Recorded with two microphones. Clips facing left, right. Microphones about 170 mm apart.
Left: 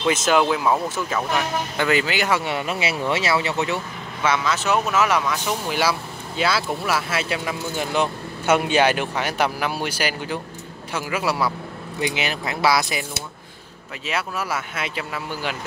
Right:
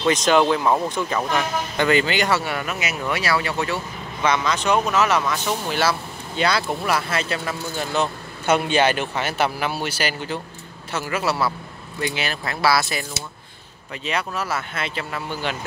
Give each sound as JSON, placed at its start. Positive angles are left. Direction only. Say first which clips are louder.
{"t": 0.0, "sound": "speech", "louder": "right 1 dB", "side_deg": 5}
{"t": 2.4, "sound": "speech", "louder": "left 2 dB", "side_deg": 25}
{"t": 4.2, "sound": "speech", "louder": "right 1 dB", "side_deg": 5}
{"t": 14.0, "sound": "speech", "louder": "right 1 dB", "side_deg": 5}